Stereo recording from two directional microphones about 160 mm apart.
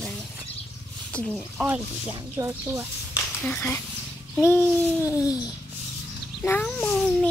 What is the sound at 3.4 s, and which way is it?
A child's voice, 10° left (ahead or behind).